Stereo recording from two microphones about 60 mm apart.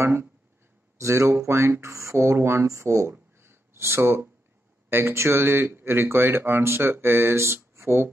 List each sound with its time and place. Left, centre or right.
0.0 s speech: right
0.9 s speech: right